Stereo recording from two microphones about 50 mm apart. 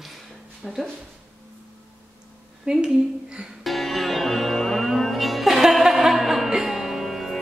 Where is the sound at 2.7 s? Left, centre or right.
Centre.